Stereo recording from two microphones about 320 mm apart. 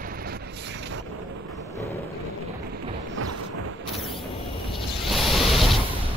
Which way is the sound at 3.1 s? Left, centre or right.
Right.